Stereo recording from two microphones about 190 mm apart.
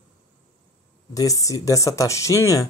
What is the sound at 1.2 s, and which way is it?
Speech, 15° left (ahead or behind).